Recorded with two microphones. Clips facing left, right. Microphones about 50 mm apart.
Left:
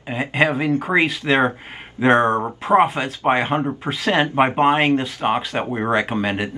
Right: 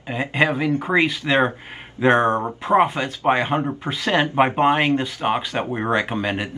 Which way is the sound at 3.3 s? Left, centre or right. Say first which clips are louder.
Left 1 dB; centre.